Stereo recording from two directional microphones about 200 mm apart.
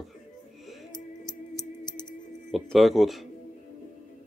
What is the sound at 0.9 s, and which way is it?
Music, 20° left (ahead or behind).